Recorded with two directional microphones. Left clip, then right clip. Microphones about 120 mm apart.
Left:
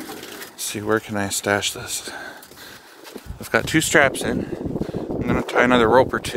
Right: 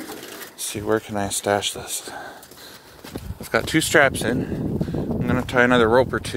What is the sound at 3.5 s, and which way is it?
Speech, 15° left (ahead or behind).